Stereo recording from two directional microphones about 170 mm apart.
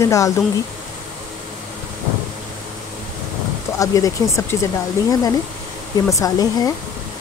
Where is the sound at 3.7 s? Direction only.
20° left (ahead or behind).